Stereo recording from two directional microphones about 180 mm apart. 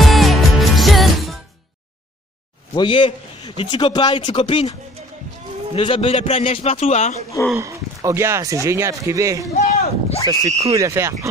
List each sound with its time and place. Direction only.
0.0 s music: centre (ahead or behind)
2.7 s a man's voice: 25° left (ahead or behind)
5.8 s a man's voice: 30° left (ahead or behind)
7.5 s speech: 15° right (ahead or behind)
9.6 s speech: 35° left (ahead or behind)
10.7 s speech: 15° right (ahead or behind)